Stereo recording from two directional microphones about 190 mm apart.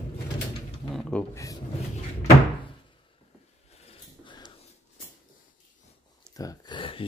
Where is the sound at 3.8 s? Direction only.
25° left (ahead or behind).